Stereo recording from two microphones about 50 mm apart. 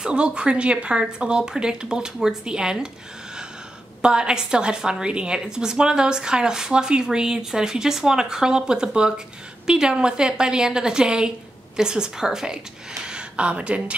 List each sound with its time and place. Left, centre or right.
0.0 s speech: centre
4.0 s speech: centre